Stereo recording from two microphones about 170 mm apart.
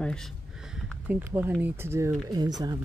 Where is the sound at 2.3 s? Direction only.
25° right (ahead or behind).